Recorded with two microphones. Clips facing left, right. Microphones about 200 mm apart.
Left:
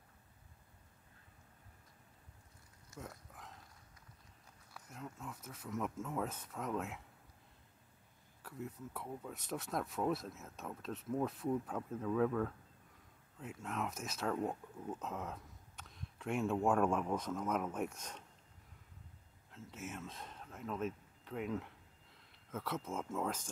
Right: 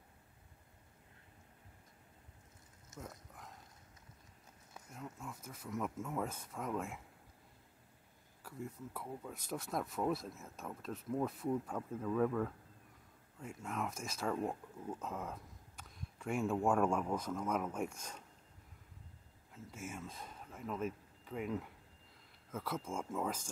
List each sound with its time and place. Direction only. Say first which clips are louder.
2.9 s a sound: even; 20° right (ahead or behind)
4.9 s speech: even; centre (ahead or behind)
8.5 s speech: even; centre (ahead or behind)
13.6 s speech: even; centre (ahead or behind)
19.5 s speech: even; centre (ahead or behind)